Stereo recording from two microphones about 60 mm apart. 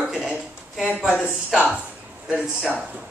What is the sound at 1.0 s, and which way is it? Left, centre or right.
Speech, centre.